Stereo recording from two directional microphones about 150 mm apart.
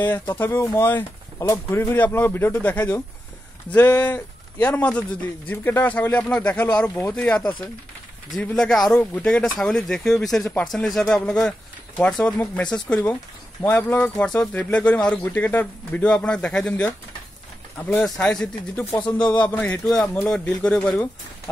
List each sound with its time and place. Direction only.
0.0 s speech: 15° left (ahead or behind)